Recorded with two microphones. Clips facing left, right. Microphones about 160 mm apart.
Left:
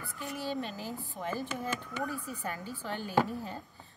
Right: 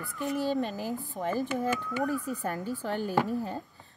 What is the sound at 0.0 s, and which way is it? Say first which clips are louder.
Speech: right 8 dB; 40° right (ahead or behind).